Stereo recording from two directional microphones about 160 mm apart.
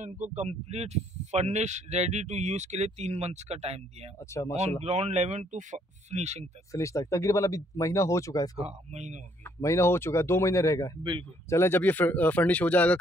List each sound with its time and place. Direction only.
0.0 s speech: 45° right (ahead or behind)
4.2 s speech: 20° left (ahead or behind)
4.6 s speech: 40° right (ahead or behind)
6.7 s speech: 20° left (ahead or behind)
8.5 s speech: 45° right (ahead or behind)
9.4 s speech: 20° left (ahead or behind)